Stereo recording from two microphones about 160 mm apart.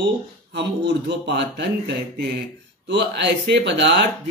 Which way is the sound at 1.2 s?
90° right.